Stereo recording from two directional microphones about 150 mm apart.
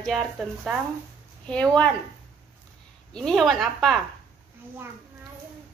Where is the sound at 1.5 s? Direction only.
10° left (ahead or behind).